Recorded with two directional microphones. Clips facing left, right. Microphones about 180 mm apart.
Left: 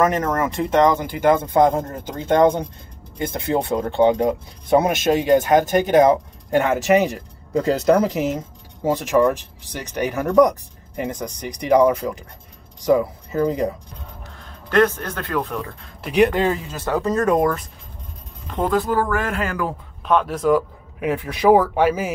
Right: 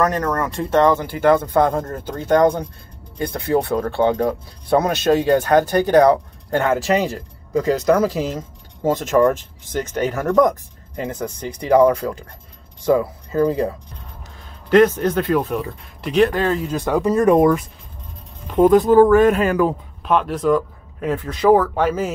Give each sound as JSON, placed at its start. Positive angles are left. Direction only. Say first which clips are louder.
{"t": 0.0, "sound": "speech", "louder": "left 1 dB", "side_deg": 20}
{"t": 7.5, "sound": "speech", "louder": "even", "side_deg": 30}
{"t": 8.8, "sound": "speech", "louder": "right 2 dB", "side_deg": 15}
{"t": 14.7, "sound": "speech", "louder": "right 5 dB", "side_deg": -15}
{"t": 16.0, "sound": "speech", "louder": "even", "side_deg": 10}
{"t": 16.7, "sound": "speech", "louder": "right 3 dB", "side_deg": -15}
{"t": 18.6, "sound": "speech", "louder": "right 9 dB", "side_deg": -20}
{"t": 20.1, "sound": "speech", "louder": "even", "side_deg": 0}